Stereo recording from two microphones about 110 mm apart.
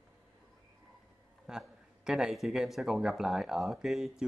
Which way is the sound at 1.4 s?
5° right (ahead or behind).